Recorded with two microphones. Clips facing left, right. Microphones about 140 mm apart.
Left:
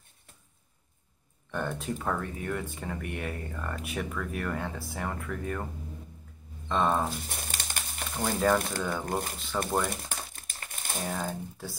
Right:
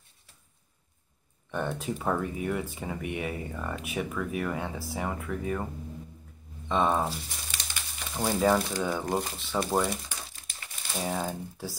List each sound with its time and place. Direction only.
1.5 s speech: centre (ahead or behind)
6.7 s speech: 5° right (ahead or behind)
7.1 s crumpling: 55° left (ahead or behind)
8.2 s speech: centre (ahead or behind)
8.5 s speech: 50° left (ahead or behind)
9.5 s speech: 10° right (ahead or behind)
9.8 s crumpling: 50° left (ahead or behind)
11.0 s speech: centre (ahead or behind)